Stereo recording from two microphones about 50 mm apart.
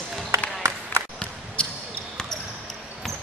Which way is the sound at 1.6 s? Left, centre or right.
Left.